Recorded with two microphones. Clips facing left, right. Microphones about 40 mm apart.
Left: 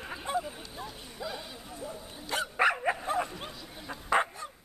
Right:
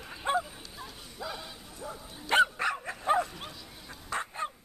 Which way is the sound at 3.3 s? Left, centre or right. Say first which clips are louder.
Left 2 dB; centre.